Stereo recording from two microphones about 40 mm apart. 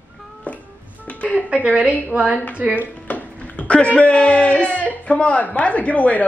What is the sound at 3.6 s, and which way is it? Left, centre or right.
A man's voice, left.